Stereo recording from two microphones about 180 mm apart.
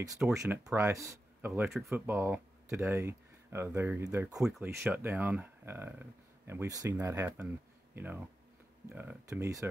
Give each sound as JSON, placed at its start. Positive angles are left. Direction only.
{"t": 0.3, "sound": "speech", "side_deg": -15}
{"t": 1.5, "sound": "speech", "side_deg": 0}
{"t": 1.9, "sound": "speech", "side_deg": -15}
{"t": 4.4, "sound": "speech", "side_deg": 0}
{"t": 4.6, "sound": "speech", "side_deg": -15}